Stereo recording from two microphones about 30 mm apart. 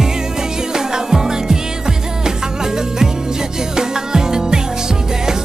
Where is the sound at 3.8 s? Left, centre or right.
Right.